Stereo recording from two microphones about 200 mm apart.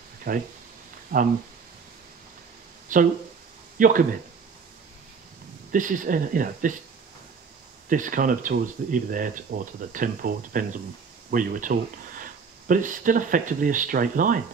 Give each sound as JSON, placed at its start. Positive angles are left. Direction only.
{"t": 0.3, "sound": "speech", "side_deg": -45}
{"t": 2.9, "sound": "speech", "side_deg": -40}
{"t": 5.7, "sound": "speech", "side_deg": -40}
{"t": 7.9, "sound": "speech", "side_deg": -40}